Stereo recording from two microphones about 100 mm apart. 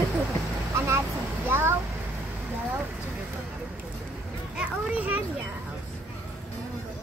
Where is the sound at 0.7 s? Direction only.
30° right (ahead or behind).